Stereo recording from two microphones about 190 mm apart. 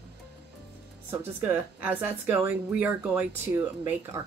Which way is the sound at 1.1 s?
10° right (ahead or behind).